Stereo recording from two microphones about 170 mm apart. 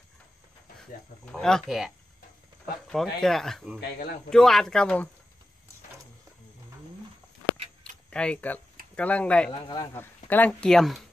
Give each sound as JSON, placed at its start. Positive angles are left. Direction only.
{"t": 1.2, "sound": "speech", "side_deg": 5}
{"t": 2.9, "sound": "speech", "side_deg": 0}
{"t": 8.1, "sound": "speech", "side_deg": 5}
{"t": 9.5, "sound": "speech", "side_deg": 30}
{"t": 9.9, "sound": "speech", "side_deg": 10}